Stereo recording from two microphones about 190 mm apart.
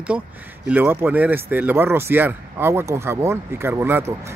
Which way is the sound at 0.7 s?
10° right (ahead or behind).